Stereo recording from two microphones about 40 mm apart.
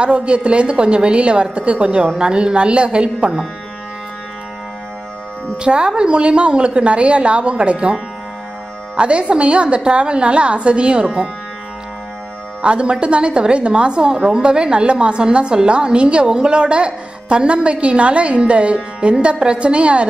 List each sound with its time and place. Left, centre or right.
0.0 s a woman's voice: right
5.6 s a woman's voice: right
8.9 s a woman's voice: right
12.6 s a woman's voice: right